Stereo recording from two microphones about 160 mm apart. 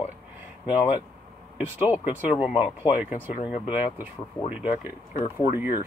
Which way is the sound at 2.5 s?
40° left (ahead or behind).